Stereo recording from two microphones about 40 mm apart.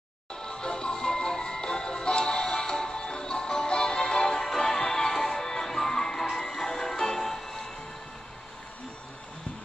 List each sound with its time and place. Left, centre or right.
0.4 s music: centre